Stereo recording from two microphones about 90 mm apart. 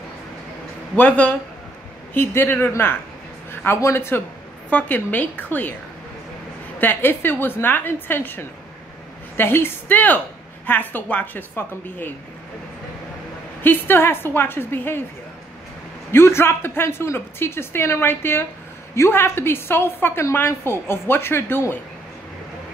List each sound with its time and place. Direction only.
0.9 s a woman's voice: 15° left (ahead or behind)
6.8 s a woman's voice: 25° left (ahead or behind)
13.6 s a woman's voice: 25° left (ahead or behind)
16.1 s a woman's voice: 25° left (ahead or behind)